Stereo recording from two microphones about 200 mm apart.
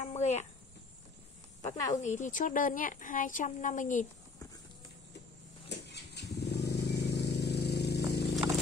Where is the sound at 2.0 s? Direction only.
40° left (ahead or behind).